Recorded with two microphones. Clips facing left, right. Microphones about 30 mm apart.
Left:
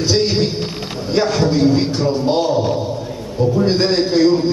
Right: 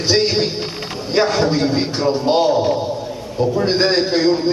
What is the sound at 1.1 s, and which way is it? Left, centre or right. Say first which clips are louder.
A man's voice: even; centre.